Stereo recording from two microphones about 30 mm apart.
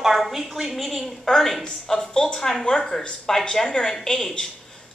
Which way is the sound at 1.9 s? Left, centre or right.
Centre.